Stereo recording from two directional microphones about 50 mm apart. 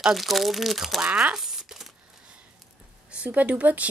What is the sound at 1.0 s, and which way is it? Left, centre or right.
Speech, right.